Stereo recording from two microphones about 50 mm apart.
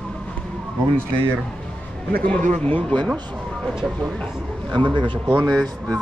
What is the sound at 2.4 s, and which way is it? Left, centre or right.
Speech, left.